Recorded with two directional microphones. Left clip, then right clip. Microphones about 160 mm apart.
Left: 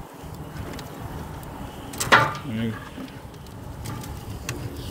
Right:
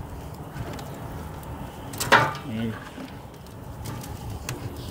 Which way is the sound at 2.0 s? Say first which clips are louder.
Left 1 dB; 30° right (ahead or behind).